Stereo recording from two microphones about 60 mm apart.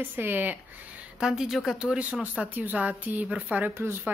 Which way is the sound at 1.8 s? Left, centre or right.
Centre.